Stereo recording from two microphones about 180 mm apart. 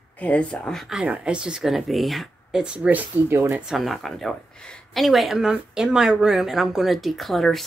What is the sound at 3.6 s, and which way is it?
Speech, centre (ahead or behind).